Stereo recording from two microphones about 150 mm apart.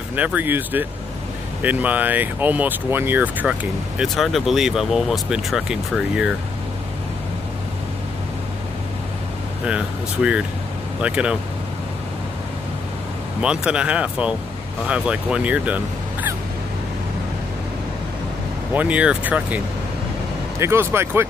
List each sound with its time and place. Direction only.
0.1 s speech: 10° right (ahead or behind)
4.0 s speech: centre (ahead or behind)
9.7 s speech: 5° right (ahead or behind)
13.4 s speech: 5° right (ahead or behind)
18.7 s speech: 10° right (ahead or behind)